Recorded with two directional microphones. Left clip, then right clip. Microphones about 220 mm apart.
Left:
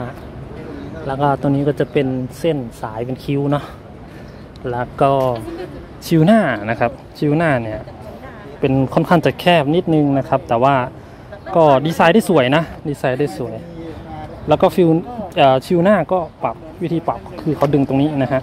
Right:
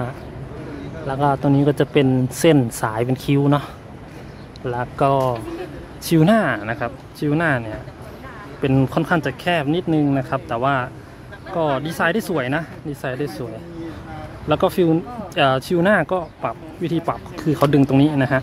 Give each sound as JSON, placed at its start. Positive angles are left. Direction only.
{"t": 1.0, "sound": "speech", "side_deg": 5}
{"t": 2.4, "sound": "speech", "side_deg": -20}
{"t": 4.6, "sound": "speech", "side_deg": 5}
{"t": 9.0, "sound": "speech", "side_deg": 15}
{"t": 14.5, "sound": "speech", "side_deg": 5}